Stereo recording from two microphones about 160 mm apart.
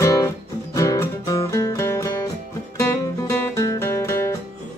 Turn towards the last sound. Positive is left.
turn(degrees=15)  # may be behind; listen again after turning